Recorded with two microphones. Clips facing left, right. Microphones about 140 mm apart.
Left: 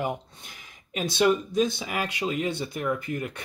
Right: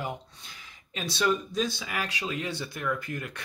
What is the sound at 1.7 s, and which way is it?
Speech, 20° left (ahead or behind).